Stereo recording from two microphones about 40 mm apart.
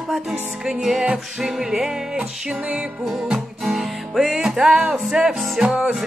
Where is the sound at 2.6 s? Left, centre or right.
Right.